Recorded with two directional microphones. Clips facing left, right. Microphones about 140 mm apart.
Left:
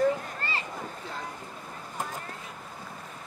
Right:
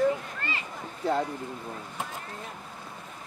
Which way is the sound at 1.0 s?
40° right (ahead or behind).